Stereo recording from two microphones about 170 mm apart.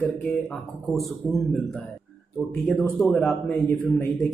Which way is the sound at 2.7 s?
5° left (ahead or behind).